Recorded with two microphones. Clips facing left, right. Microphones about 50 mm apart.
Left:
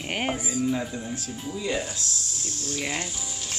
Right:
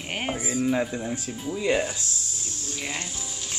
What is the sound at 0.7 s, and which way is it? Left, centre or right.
Speech, right.